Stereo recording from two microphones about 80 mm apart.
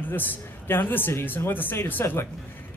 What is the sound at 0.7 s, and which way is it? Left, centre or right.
Speech, left.